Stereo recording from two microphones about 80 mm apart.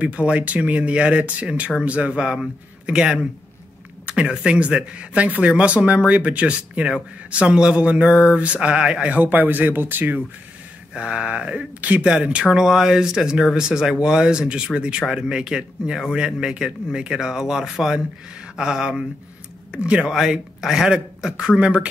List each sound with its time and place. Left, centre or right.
0.0 s speech: centre
10.9 s speech: centre